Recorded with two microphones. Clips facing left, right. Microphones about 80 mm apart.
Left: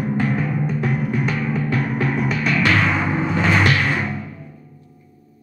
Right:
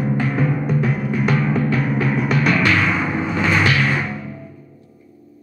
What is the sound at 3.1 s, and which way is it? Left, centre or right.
Music, left.